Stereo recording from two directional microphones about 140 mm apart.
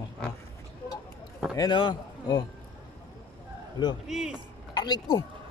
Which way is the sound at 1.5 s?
35° left (ahead or behind).